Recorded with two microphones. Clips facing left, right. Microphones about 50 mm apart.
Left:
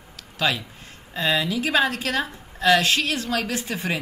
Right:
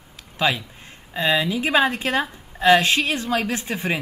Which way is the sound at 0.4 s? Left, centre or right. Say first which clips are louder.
Right 2 dB; centre.